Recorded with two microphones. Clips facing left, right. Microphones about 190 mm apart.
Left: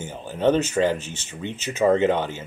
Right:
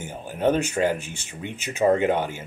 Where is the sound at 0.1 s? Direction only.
10° right (ahead or behind).